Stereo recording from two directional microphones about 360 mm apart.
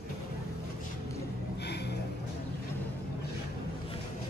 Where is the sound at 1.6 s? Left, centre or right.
Left.